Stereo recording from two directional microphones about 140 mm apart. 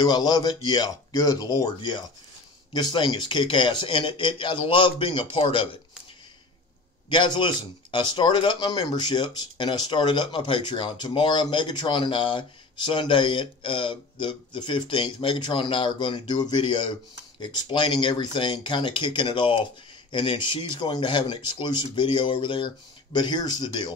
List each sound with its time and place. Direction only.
0.0 s speech: 30° left (ahead or behind)
7.1 s speech: 35° left (ahead or behind)